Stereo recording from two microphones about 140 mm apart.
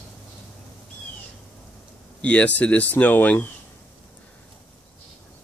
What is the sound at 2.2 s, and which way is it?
Speech, 10° left (ahead or behind).